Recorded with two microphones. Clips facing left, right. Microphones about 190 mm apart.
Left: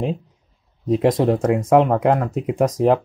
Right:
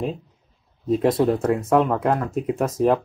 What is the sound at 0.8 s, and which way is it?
Speech, 15° left (ahead or behind).